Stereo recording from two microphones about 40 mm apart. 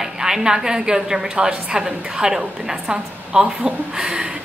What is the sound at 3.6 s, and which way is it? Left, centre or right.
Speech, centre.